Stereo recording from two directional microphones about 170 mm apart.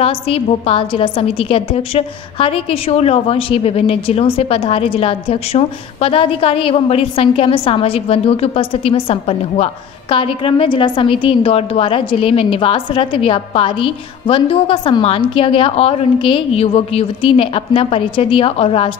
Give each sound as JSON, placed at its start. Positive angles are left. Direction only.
{"t": 0.0, "sound": "a woman's voice", "side_deg": 35}